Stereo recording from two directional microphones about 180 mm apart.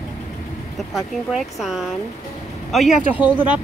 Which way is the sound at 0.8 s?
Centre (ahead or behind).